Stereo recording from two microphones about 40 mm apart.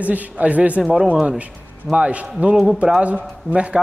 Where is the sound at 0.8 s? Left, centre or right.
Centre.